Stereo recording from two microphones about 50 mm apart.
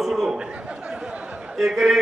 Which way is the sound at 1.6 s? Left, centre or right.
Centre.